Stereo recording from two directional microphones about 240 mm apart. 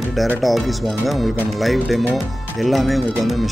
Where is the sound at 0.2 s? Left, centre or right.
Centre.